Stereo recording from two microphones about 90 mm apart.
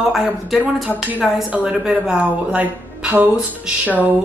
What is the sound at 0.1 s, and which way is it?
A woman's voice, centre (ahead or behind).